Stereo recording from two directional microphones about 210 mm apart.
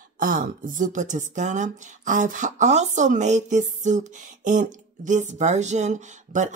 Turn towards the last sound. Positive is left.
turn(degrees=-35)  # may be behind; listen again after turning